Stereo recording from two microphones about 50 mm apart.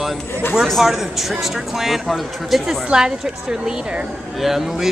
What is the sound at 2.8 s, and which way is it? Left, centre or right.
Speech, centre.